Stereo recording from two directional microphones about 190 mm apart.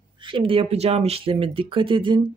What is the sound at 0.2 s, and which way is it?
Speech, 25° right (ahead or behind).